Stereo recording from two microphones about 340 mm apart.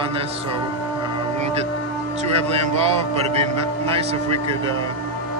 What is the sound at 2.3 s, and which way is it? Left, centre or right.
A man's voice, centre.